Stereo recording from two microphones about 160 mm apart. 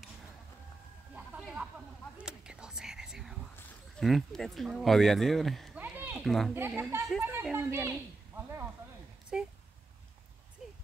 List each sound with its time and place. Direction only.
2.1 s whispering: 5° right (ahead or behind)
4.0 s speech: centre (ahead or behind)
5.8 s a sound: 10° right (ahead or behind)
6.2 s speech: centre (ahead or behind)
6.5 s speech: 10° right (ahead or behind)
9.3 s speech: 5° right (ahead or behind)